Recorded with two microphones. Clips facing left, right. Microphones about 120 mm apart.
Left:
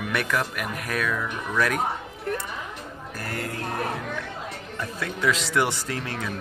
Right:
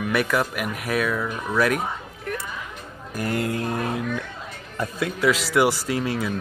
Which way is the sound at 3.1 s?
20° right (ahead or behind).